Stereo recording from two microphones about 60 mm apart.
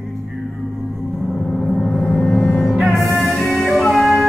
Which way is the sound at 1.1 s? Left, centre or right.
Centre.